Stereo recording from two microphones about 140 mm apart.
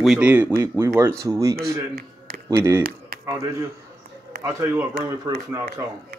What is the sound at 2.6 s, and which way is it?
Speech, 20° right (ahead or behind).